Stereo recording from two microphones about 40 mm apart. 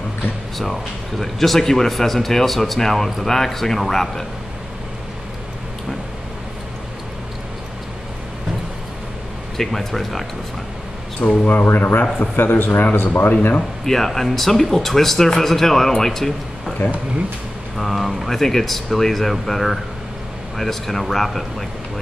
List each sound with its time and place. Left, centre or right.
1.2 s speech: centre
9.6 s speech: centre
11.2 s speech: centre
11.6 s a man's voice: left
13.6 s speech: centre
16.8 s speech: left
17.7 s speech: centre